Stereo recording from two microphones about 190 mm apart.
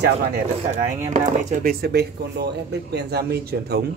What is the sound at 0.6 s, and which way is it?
Speech, 40° right (ahead or behind).